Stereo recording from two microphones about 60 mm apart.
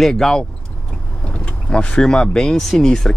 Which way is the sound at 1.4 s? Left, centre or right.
Left.